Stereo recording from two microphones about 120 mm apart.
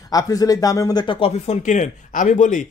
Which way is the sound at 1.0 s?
55° left (ahead or behind).